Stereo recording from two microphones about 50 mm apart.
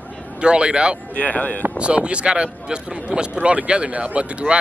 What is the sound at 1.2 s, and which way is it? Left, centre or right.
Speech, left.